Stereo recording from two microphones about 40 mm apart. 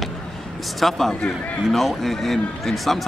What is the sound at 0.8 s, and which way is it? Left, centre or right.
A man's voice, centre.